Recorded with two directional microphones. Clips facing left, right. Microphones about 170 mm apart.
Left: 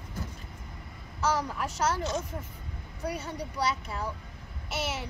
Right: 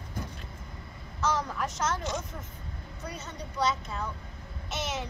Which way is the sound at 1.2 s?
35° left (ahead or behind).